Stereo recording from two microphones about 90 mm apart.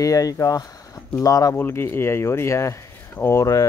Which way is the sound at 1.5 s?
25° left (ahead or behind).